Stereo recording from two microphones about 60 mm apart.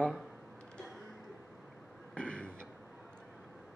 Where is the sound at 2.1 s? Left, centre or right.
Centre.